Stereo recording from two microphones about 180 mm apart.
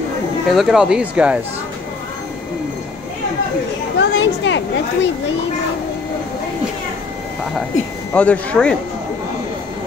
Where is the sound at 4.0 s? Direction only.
90° left.